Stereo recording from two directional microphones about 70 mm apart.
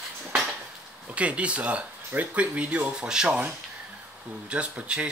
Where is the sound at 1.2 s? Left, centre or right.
Centre.